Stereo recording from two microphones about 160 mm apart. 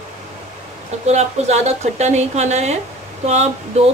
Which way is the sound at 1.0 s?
45° right (ahead or behind).